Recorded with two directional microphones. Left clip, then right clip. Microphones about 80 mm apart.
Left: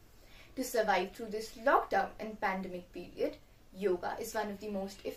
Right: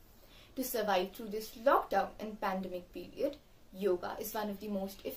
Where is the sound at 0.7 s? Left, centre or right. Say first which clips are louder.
Left 2 dB; right.